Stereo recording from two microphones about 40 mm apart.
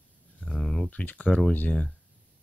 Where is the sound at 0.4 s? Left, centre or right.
Centre.